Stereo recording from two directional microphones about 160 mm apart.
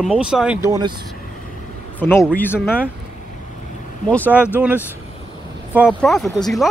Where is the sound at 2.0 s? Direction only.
15° left (ahead or behind).